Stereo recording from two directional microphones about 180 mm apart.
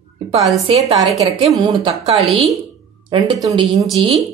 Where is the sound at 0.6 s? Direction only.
35° right (ahead or behind).